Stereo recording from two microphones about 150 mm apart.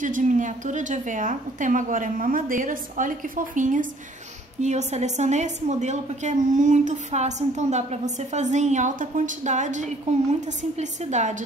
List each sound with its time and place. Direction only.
0.0 s a woman's voice: 60° right (ahead or behind)